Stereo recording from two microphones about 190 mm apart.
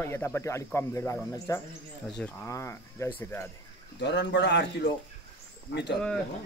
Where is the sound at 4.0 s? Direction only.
65° left (ahead or behind).